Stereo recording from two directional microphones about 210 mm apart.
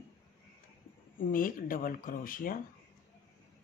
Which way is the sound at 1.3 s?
40° left (ahead or behind).